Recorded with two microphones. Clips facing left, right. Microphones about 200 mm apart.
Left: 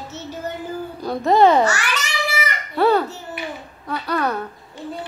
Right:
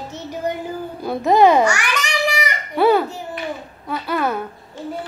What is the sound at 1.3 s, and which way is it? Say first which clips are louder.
Babbling: right 1 dB; 15° right (ahead or behind).